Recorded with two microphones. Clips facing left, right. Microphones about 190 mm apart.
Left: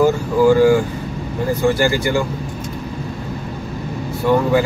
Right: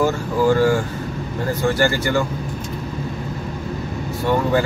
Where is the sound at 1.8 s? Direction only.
15° left (ahead or behind).